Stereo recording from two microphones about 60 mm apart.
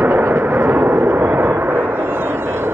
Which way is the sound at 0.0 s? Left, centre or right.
Right.